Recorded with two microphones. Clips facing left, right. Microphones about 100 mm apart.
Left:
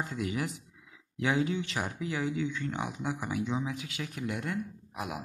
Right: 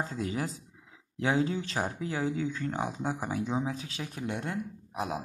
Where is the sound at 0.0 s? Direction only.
35° right (ahead or behind).